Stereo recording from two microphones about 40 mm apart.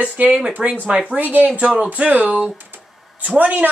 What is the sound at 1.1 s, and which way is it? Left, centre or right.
A man's voice, right.